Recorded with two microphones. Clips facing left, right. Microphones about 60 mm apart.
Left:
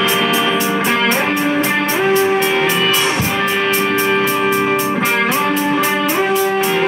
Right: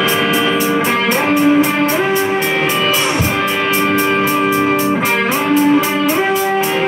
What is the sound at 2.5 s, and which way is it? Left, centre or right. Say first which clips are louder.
Music: even; centre.